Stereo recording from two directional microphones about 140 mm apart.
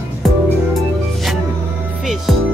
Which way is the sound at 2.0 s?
Centre (ahead or behind).